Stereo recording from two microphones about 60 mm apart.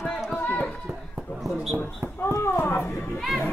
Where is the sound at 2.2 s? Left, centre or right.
Left.